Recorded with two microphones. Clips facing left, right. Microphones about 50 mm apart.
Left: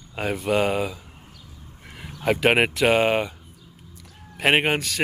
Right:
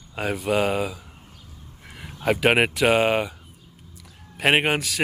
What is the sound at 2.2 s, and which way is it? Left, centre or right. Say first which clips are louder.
A man's voice: even; centre.